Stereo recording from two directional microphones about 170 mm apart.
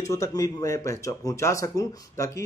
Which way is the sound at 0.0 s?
20° left (ahead or behind).